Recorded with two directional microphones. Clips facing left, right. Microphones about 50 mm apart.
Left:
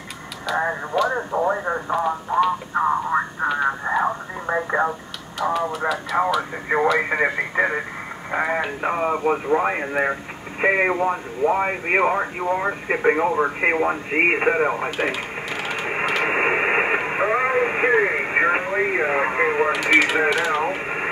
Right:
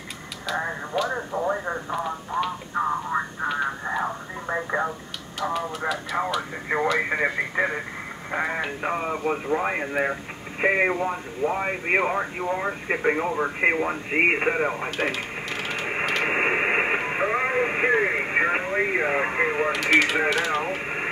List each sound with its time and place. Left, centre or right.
0.5 s radio: centre
1.5 s speech: centre
2.7 s a sound: centre
3.6 s radio: left
5.4 s a sound: centre
6.1 s speech: centre